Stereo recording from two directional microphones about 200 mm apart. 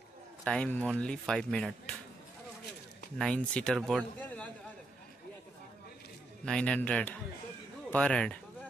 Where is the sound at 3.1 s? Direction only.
5° left (ahead or behind).